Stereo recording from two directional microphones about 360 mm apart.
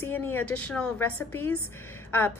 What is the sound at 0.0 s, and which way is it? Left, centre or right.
A woman's voice, centre.